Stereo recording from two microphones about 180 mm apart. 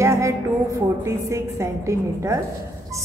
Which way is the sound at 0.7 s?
15° right (ahead or behind).